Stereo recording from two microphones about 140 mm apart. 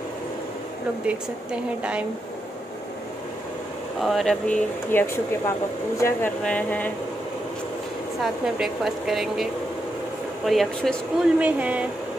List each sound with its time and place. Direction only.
1.0 s a woman's voice: 10° right (ahead or behind)
4.0 s a woman's voice: centre (ahead or behind)
5.9 s speech: 20° left (ahead or behind)
8.2 s a woman's voice: centre (ahead or behind)
11.3 s a woman's voice: 10° right (ahead or behind)